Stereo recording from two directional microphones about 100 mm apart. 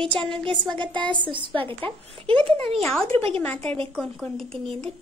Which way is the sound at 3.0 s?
70° right (ahead or behind).